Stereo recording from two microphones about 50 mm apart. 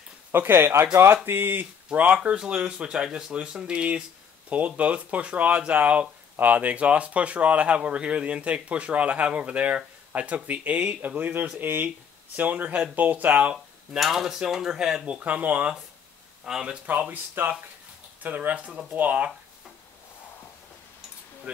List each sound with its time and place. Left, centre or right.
0.4 s speech: right
1.9 s speech: right
13.9 s speech: centre
15.0 s speech: right
16.4 s speech: centre
17.1 s speech: right